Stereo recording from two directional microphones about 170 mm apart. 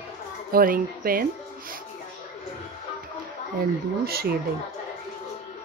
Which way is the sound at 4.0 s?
65° right (ahead or behind).